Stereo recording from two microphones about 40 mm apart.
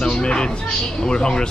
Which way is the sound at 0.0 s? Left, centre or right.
Left.